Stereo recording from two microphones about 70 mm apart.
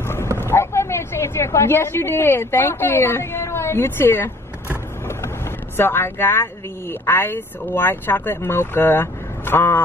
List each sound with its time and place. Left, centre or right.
0.0 s a sound: left
0.4 s a woman's voice: left
5.8 s speech: left